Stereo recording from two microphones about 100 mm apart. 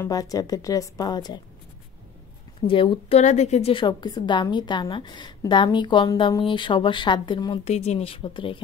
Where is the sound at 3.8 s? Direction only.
50° left (ahead or behind).